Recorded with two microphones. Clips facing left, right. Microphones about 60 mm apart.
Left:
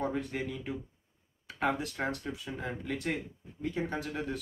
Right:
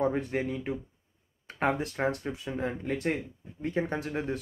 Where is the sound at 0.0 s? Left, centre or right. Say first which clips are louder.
Right 5 dB; right.